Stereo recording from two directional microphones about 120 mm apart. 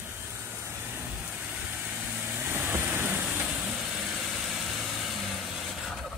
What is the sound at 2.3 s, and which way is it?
Vehicle, 15° right (ahead or behind).